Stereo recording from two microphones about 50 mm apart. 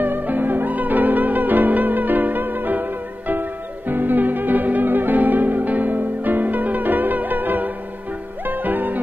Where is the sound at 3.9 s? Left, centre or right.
Right.